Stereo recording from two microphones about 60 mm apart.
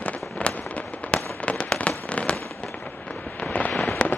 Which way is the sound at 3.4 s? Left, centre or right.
Left.